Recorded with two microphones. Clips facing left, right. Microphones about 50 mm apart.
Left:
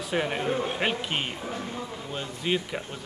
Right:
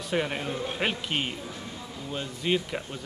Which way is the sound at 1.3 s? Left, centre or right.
Left.